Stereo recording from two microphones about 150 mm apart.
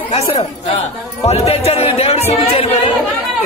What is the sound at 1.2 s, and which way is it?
Speech, 45° left (ahead or behind).